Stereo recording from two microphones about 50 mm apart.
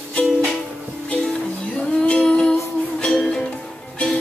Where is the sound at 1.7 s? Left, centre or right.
Centre.